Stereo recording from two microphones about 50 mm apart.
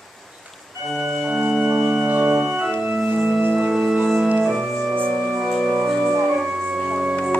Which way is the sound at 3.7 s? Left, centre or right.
Centre.